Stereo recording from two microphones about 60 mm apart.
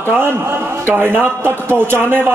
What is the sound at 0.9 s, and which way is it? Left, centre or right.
A man's voice, right.